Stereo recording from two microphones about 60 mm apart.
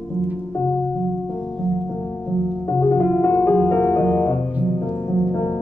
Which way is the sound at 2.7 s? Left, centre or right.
Left.